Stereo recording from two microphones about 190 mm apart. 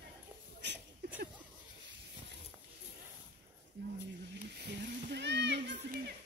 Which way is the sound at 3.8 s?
75° right (ahead or behind).